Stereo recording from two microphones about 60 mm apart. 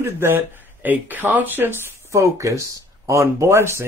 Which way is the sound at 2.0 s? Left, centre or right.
Right.